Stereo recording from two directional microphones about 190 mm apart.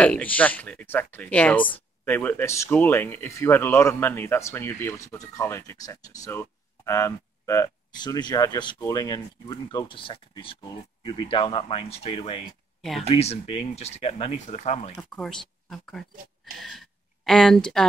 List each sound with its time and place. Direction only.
0.0 s speech: 5° left (ahead or behind); by 15.0 s 35° left (ahead or behind)
15.0 s speech: 5° left (ahead or behind)